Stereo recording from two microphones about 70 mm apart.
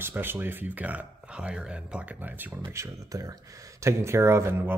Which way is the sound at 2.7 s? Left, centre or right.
Right.